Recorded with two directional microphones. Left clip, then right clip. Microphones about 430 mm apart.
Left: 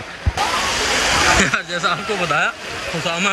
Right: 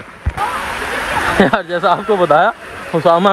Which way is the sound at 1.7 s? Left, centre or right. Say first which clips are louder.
Right 6 dB; right.